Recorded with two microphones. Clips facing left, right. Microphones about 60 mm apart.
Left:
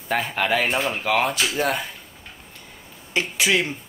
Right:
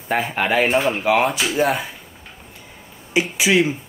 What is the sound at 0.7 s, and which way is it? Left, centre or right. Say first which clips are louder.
Speech: right 5 dB; centre.